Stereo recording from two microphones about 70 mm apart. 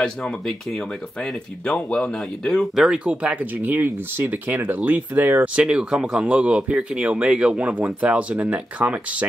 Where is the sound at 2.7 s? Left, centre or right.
Centre.